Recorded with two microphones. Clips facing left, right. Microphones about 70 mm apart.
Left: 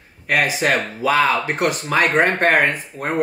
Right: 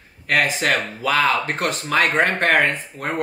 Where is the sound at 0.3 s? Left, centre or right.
Centre.